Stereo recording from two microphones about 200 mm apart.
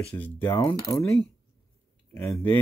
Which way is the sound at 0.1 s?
10° left (ahead or behind).